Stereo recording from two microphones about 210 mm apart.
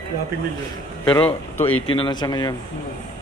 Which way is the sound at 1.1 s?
10° left (ahead or behind).